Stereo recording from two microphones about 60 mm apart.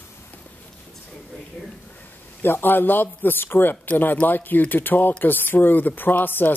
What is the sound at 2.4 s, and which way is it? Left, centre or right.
Speech, left.